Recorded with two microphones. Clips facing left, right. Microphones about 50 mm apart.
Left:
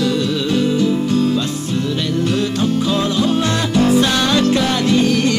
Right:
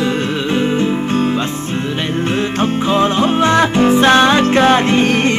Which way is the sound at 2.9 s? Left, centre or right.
Right.